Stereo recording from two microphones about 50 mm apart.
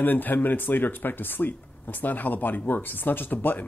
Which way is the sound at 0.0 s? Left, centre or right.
Left.